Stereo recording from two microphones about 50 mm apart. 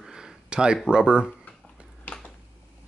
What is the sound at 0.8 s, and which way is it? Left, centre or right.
Speech, centre.